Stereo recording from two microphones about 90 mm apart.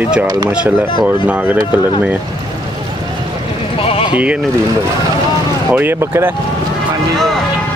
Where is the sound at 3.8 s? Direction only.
75° left (ahead or behind).